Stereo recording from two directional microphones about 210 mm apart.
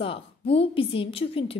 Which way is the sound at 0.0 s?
25° left (ahead or behind).